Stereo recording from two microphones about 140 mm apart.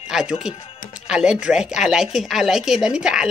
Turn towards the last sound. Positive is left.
turn(degrees=-5)  # may be behind; listen again after turning